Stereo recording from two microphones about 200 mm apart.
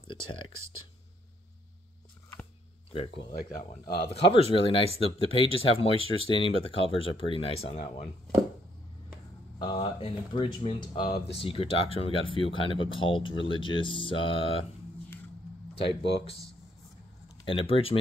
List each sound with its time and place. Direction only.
2.9 s speech: 25° left (ahead or behind)
9.6 s speech: 25° left (ahead or behind)
15.7 s speech: 25° left (ahead or behind)
17.5 s speech: 25° left (ahead or behind)